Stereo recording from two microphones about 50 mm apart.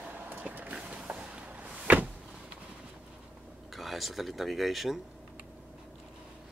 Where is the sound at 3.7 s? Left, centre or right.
Centre.